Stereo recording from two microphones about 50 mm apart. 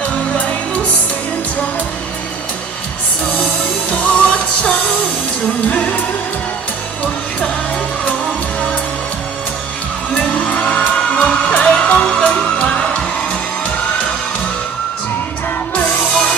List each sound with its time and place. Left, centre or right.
3.9 s music: left
10.1 s music: left
16.1 s music: centre